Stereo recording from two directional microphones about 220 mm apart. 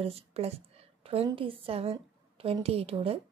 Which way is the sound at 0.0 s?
25° right (ahead or behind).